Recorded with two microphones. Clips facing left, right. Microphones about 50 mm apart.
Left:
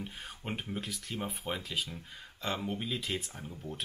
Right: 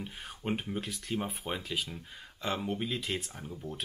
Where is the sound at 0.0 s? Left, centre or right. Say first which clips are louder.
Right 3 dB; centre.